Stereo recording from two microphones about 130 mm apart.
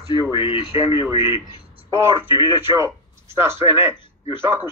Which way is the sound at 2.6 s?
20° right (ahead or behind).